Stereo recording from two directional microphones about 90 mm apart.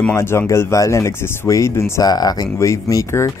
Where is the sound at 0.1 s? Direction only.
30° left (ahead or behind).